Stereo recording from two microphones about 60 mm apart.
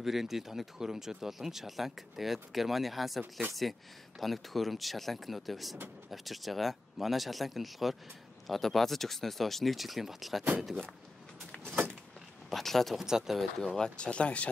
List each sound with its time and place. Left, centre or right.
0.0 s speech: centre
12.4 s speech: centre
13.0 s speech: centre
13.6 s speech: centre